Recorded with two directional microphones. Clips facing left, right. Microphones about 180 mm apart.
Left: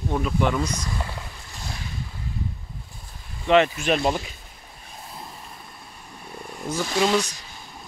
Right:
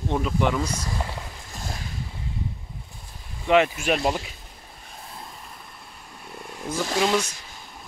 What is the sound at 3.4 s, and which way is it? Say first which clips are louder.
Speech: left 1 dB; 10° right (ahead or behind).